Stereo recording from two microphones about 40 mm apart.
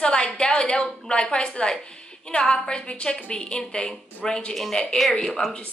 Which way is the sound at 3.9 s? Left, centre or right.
Centre.